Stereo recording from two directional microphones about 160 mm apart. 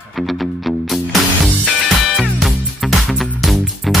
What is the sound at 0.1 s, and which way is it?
Music, centre (ahead or behind).